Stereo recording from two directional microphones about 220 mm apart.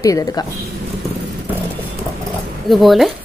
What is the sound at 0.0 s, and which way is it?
Speech, 15° left (ahead or behind).